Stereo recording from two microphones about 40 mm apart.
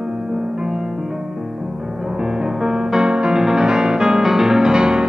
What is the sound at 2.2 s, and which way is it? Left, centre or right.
Music, centre.